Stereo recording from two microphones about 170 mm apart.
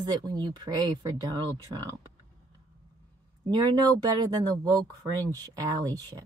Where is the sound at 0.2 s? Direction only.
25° right (ahead or behind).